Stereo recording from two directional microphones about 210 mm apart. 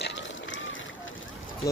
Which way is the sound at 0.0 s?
60° left (ahead or behind).